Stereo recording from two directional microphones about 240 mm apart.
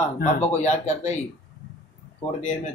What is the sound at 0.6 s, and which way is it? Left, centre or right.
Speech, left.